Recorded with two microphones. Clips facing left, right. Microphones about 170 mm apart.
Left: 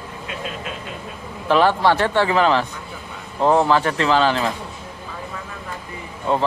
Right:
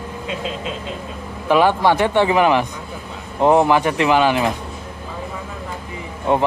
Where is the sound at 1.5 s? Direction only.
15° right (ahead or behind).